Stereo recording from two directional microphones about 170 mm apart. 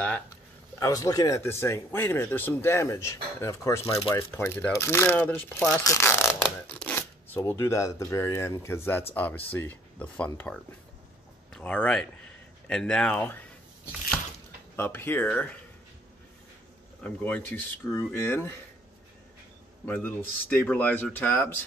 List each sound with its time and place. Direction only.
0.7 s speech: 20° left (ahead or behind)
14.8 s speech: 10° left (ahead or behind)
17.0 s speech: 10° left (ahead or behind)
19.9 s speech: 10° left (ahead or behind)